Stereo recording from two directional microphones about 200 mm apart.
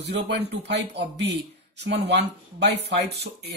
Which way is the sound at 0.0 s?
60° right (ahead or behind).